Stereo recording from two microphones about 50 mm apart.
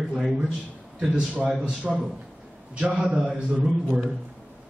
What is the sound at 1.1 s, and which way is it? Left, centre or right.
A man's voice, right.